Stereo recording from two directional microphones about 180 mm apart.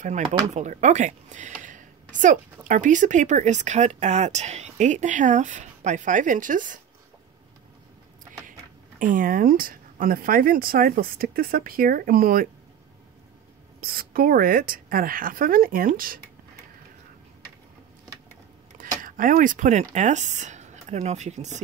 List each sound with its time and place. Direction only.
0.0 s speech: 40° right (ahead or behind)
9.0 s speech: 50° right (ahead or behind)
13.7 s speech: 55° right (ahead or behind)
18.7 s a sound: 45° right (ahead or behind)
19.0 s speech: 50° right (ahead or behind)